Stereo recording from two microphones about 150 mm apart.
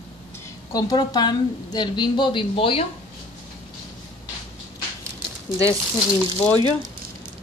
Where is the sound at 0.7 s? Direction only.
25° left (ahead or behind).